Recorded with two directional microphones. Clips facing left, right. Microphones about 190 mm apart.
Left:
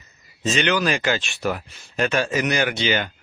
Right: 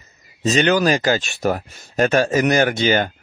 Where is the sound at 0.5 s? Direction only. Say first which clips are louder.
Right 5 dB; 40° right (ahead or behind).